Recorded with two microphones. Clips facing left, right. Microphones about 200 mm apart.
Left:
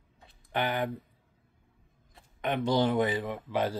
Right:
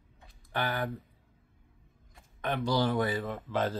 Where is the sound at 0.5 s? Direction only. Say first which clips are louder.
Left 3 dB; 20° left (ahead or behind).